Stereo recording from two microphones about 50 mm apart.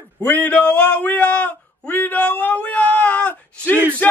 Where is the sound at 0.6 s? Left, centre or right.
Left.